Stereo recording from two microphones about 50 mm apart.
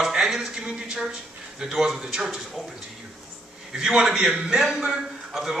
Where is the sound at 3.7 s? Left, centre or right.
Centre.